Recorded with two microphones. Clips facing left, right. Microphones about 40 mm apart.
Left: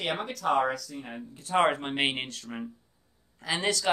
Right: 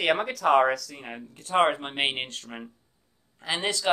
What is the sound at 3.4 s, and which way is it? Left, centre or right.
Speech, right.